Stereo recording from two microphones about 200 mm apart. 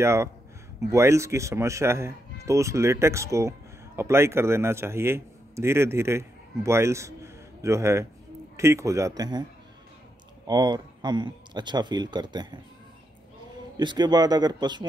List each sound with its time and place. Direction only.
0.0 s speech: 15° right (ahead or behind)
13.7 s speech: 20° right (ahead or behind)